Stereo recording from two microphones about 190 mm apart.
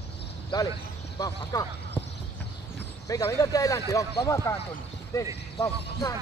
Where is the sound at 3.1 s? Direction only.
15° left (ahead or behind).